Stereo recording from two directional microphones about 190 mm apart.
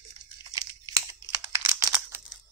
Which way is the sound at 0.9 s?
15° right (ahead or behind).